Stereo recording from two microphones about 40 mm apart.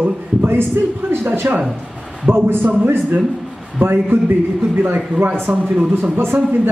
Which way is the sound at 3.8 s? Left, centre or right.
Right.